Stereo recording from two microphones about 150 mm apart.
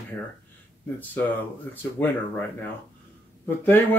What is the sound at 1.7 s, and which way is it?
Speech, 15° left (ahead or behind).